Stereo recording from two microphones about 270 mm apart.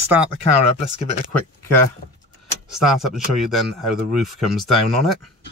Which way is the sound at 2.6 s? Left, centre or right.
Centre.